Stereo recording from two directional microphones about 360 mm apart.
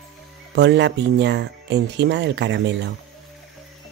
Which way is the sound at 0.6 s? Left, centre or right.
Right.